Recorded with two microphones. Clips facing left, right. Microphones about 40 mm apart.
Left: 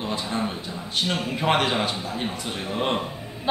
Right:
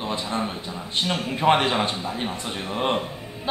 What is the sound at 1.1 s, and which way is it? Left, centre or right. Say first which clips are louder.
A woman's voice: right 4 dB; centre.